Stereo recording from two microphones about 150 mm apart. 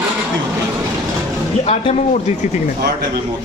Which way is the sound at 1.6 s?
45° left (ahead or behind).